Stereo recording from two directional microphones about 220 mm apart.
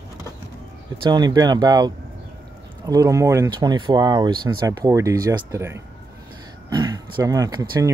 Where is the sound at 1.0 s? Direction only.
20° right (ahead or behind).